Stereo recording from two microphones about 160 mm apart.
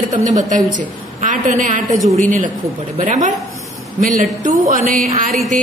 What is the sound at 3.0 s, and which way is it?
A woman's voice, 50° right (ahead or behind).